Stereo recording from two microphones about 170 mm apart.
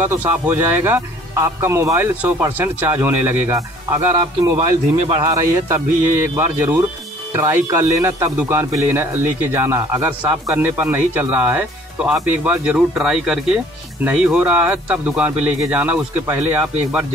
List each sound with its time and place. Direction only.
0.0 s a man's voice: 10° right (ahead or behind)
4.6 s a man's voice: 35° right (ahead or behind)
5.2 s a man's voice: 20° right (ahead or behind)